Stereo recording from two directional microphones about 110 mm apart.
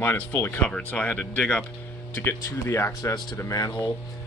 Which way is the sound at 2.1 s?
20° left (ahead or behind).